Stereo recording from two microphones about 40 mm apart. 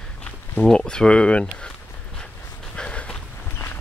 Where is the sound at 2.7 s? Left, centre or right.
Left.